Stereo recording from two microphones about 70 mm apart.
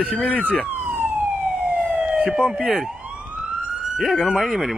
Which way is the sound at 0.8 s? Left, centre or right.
Right.